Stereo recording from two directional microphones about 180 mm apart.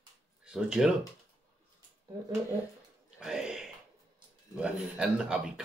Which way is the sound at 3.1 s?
5° right (ahead or behind).